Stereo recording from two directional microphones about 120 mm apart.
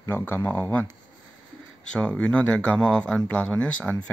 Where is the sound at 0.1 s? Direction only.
15° left (ahead or behind).